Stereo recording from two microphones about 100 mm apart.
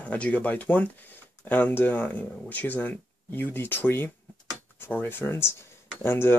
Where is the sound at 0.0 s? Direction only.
15° left (ahead or behind).